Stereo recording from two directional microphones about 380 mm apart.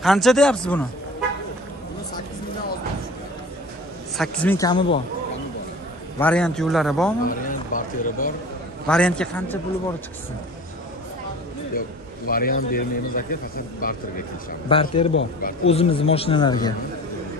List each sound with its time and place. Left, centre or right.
0.0 s a man's voice: centre
4.2 s a man's voice: centre
6.1 s a man's voice: centre
7.2 s a man's voice: left
8.8 s a man's voice: centre
12.3 s a man's voice: left